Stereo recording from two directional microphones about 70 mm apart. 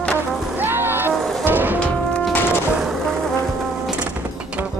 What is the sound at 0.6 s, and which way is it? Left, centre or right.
Music, right.